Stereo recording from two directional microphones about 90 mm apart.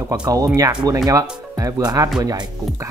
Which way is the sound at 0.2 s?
40° right (ahead or behind).